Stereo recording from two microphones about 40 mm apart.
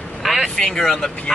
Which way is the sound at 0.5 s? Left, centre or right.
Centre.